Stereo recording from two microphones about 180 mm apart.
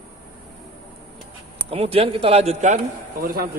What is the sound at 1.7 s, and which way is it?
A man's voice, 35° right (ahead or behind).